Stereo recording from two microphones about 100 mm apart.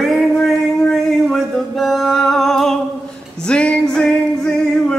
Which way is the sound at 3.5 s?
10° left (ahead or behind).